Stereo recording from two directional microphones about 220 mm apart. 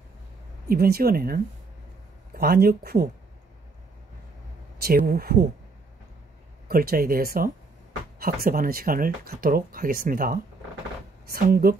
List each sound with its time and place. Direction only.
0.7 s speech: 45° right (ahead or behind)
4.7 s speech: 45° right (ahead or behind)
6.7 s speech: 40° right (ahead or behind)